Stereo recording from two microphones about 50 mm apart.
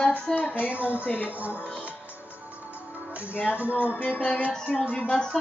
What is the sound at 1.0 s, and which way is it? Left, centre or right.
Music, left.